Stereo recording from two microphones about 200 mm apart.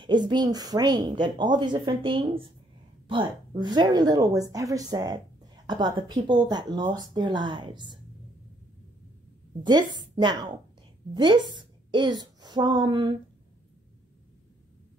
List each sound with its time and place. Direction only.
0.0 s speech: 25° right (ahead or behind)
9.6 s a woman's voice: 20° right (ahead or behind)